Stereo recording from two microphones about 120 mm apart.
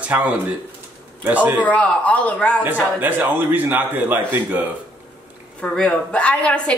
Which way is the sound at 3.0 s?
15° right (ahead or behind).